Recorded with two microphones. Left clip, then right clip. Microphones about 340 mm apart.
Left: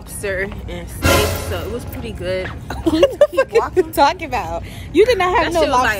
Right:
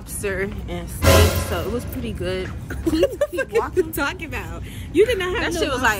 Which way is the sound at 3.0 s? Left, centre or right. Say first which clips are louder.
Left 9 dB; centre.